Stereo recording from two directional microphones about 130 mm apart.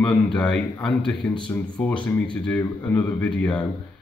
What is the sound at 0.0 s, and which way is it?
Speech, 5° left (ahead or behind).